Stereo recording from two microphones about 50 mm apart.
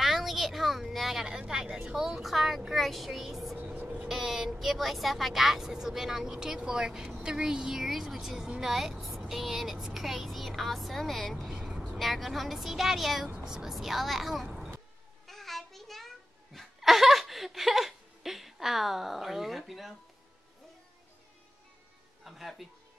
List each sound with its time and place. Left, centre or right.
0.0 s a sound: centre
1.5 s a woman's voice: centre
3.5 s vehicle: right
4.1 s a woman's voice: centre
11.5 s vehicle: centre
12.0 s speech: centre
15.2 s child singing: centre
16.5 s a sound: centre
22.2 s speech: centre